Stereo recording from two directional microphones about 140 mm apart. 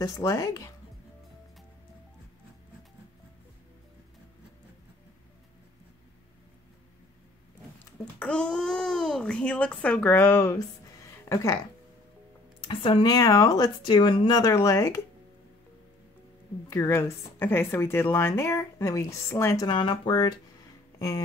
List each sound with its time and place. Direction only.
0.0 s speech: 20° left (ahead or behind)
8.2 s a child's voice: 5° left (ahead or behind); by 11.5 s 20° left (ahead or behind)
12.5 s speech: 40° left (ahead or behind)
16.6 s speech: 20° left (ahead or behind)